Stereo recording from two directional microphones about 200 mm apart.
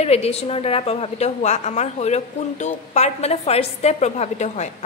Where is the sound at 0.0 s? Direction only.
30° left (ahead or behind).